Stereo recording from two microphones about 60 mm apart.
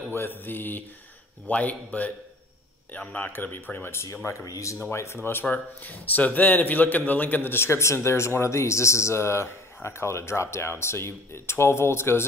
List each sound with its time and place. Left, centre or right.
0.1 s a man's voice: left
3.9 s speech: left
4.5 s speech: left
4.9 s speech: left
5.4 s a man's voice: left